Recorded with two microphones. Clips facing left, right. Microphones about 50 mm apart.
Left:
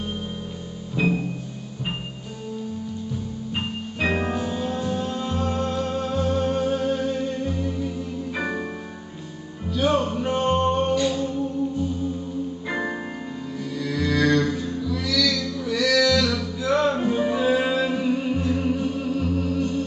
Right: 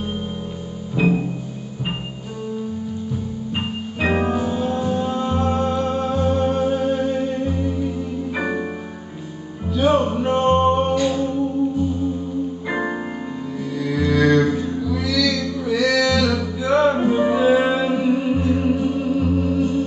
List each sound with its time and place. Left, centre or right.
0.9 s music: centre
3.5 s music: centre
9.7 s music: centre
12.6 s music: centre